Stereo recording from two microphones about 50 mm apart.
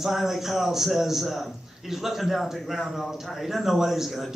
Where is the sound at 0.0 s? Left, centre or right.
Centre.